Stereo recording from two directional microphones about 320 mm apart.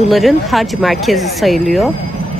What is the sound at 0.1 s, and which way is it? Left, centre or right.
A woman's voice, centre.